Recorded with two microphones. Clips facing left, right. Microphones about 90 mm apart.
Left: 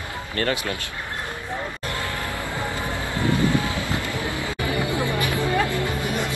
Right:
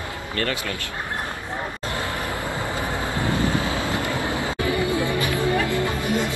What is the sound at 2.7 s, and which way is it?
Vehicle, 20° right (ahead or behind).